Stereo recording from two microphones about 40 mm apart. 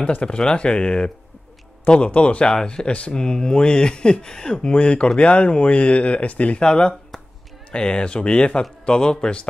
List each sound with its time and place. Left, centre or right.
0.2 s speech: left
6.6 s speech: left